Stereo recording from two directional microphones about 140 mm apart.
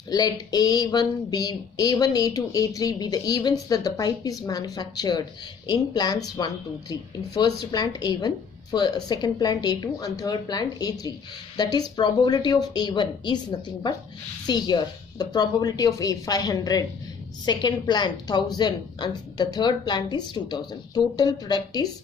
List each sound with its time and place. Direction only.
0.1 s a woman's voice: 30° left (ahead or behind)